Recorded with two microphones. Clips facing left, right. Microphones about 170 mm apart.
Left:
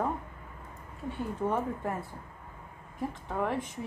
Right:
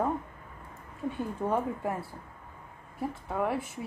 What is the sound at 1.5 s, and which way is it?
Speech, 10° right (ahead or behind).